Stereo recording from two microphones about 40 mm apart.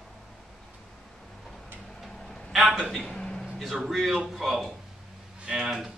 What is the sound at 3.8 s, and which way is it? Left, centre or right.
Speech, centre.